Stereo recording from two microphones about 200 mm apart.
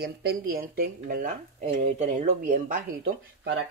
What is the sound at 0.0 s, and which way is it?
Speech, 50° right (ahead or behind).